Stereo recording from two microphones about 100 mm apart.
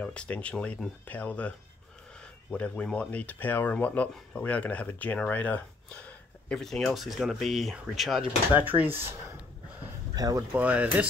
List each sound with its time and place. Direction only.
0.0 s speech: 10° left (ahead or behind)
2.5 s speech: 15° left (ahead or behind)
6.5 s speech: 5° left (ahead or behind)
8.5 s speech: 20° right (ahead or behind)
10.1 s speech: 40° right (ahead or behind)
10.5 s speech: 15° right (ahead or behind)